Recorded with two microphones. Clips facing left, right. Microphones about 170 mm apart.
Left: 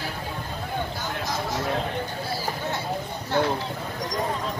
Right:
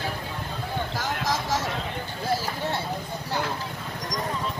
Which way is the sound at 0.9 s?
90° right.